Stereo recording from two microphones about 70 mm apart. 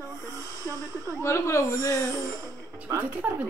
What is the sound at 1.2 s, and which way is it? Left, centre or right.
Speech, left.